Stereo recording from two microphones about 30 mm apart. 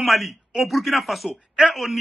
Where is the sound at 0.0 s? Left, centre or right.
Centre.